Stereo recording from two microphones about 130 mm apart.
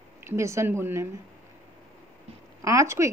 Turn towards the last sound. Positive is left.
turn(degrees=-25)  # may be behind; listen again after turning